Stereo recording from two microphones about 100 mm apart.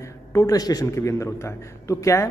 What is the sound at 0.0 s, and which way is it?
A man's voice, 30° left (ahead or behind).